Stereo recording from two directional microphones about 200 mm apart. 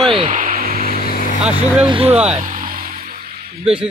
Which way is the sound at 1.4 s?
5° right (ahead or behind).